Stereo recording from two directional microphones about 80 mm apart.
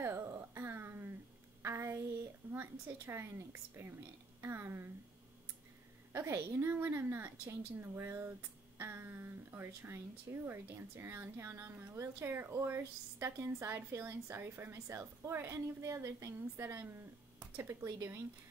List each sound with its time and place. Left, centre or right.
0.0 s a sound: right
2.5 s a woman's voice: right
6.1 s a woman's voice: right